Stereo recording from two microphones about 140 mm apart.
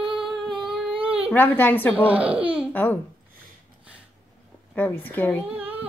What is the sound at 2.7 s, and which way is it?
Speech, 10° left (ahead or behind).